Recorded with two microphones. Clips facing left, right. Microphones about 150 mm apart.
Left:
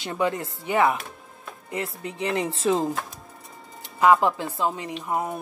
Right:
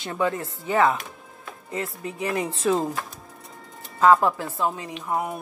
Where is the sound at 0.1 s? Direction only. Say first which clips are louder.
Even; 20° left (ahead or behind).